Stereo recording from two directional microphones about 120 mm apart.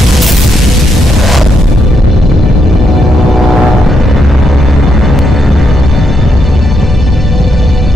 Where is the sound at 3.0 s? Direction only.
Centre (ahead or behind).